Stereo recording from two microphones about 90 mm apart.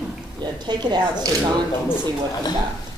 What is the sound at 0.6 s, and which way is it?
Speech, 55° right (ahead or behind).